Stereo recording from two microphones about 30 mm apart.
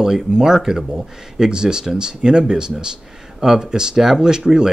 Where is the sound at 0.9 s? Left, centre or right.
Right.